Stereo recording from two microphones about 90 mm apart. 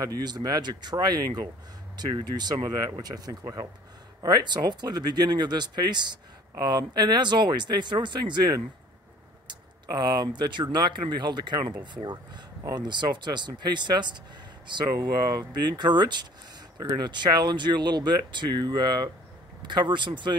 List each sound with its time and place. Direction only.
0.0 s speech: 45° right (ahead or behind)
9.8 s speech: 55° right (ahead or behind)